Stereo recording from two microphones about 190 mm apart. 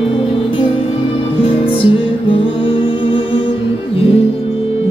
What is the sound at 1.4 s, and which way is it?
Music, 30° left (ahead or behind).